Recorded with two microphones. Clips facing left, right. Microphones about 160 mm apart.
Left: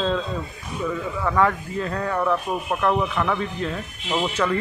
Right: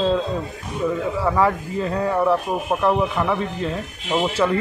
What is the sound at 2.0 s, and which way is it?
Speech, 30° right (ahead or behind).